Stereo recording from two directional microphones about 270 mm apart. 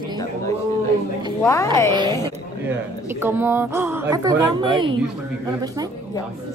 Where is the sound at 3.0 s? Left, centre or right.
Centre.